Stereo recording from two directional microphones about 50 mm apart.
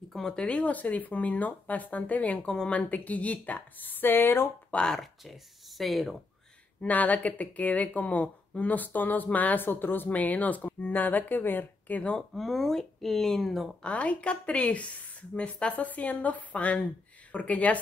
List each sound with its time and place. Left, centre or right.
0.1 s speech: centre
0.4 s speech: left
2.4 s speech: centre
2.7 s speech: left
5.0 s speech: centre
6.8 s speech: left
10.0 s speech: left
12.2 s speech: centre
13.8 s a woman's voice: left